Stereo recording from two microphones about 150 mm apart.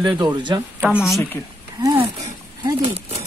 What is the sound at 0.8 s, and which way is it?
Speech, 5° right (ahead or behind).